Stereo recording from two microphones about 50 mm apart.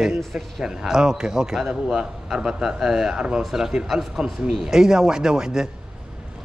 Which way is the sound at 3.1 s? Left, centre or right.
Centre.